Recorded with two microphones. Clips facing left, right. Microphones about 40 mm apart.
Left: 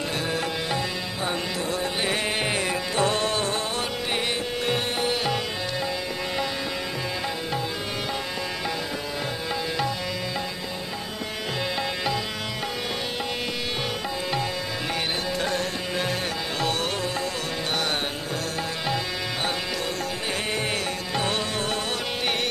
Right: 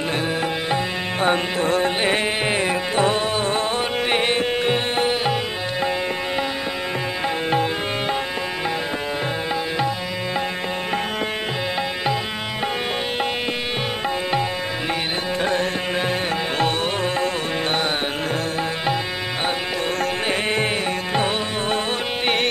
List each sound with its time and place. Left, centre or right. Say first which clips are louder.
1.2 s music: right 9 dB; right
2.4 s music: right 5 dB; right
4.1 s music: right 8 dB; right
21.1 s music: right 3 dB; right